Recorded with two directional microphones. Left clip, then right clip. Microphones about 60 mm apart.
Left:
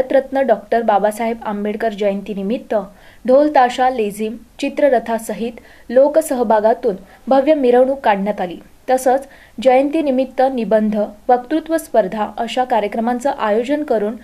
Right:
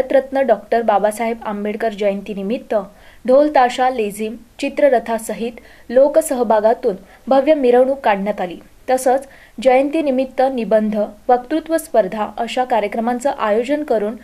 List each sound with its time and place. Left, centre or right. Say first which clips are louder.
0.0 s a woman's voice: even; centre